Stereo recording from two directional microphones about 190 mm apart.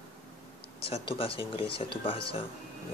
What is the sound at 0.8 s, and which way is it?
Speech, 30° left (ahead or behind).